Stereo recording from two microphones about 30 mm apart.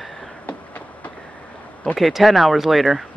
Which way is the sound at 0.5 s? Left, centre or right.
Left.